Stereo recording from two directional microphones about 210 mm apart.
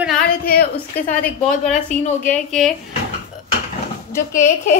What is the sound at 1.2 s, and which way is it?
A woman's voice, 5° left (ahead or behind).